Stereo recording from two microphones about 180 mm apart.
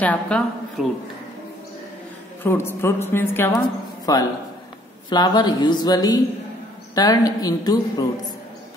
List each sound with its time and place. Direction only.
0.0 s a woman's voice: 5° left (ahead or behind)
2.4 s a woman's voice: 15° left (ahead or behind)